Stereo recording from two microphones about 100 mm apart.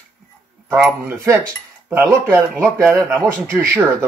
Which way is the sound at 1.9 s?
25° right (ahead or behind).